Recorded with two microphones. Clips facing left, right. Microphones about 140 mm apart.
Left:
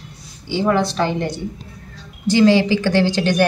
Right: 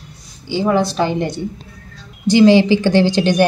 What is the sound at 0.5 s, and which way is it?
A woman's voice, 5° right (ahead or behind).